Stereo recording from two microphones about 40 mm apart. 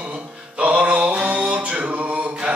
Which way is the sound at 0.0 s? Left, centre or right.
Right.